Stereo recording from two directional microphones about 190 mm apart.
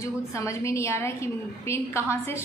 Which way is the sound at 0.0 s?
15° left (ahead or behind).